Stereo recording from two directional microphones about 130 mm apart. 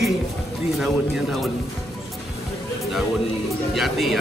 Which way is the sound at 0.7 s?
Centre (ahead or behind).